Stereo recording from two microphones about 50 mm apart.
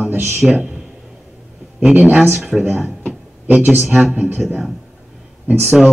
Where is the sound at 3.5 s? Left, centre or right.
Right.